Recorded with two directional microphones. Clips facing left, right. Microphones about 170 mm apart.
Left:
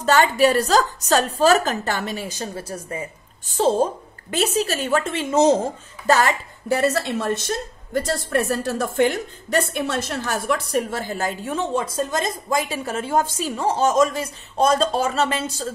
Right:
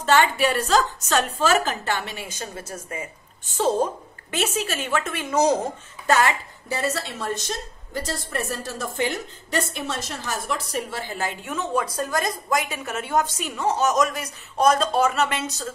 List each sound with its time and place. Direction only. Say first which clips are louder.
0.0 s a woman's voice: left 3 dB; 40° left (ahead or behind); by 5.6 s 25° left (ahead or behind)
6.0 s a woman's voice: left 2 dB; 35° left (ahead or behind)
6.7 s a woman's voice: left 7 dB; 65° left (ahead or behind); by 15.7 s 30° left (ahead or behind)